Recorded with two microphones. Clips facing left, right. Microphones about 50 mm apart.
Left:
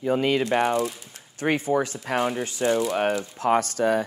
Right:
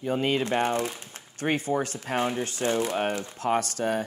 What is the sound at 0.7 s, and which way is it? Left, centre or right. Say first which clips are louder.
Chopping: left 3 dB; right.